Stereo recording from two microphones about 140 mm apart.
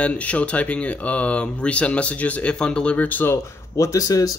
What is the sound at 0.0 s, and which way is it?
Speech, 10° left (ahead or behind).